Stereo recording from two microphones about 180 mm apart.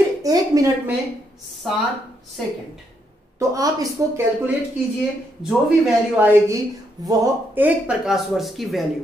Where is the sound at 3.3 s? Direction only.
20° right (ahead or behind).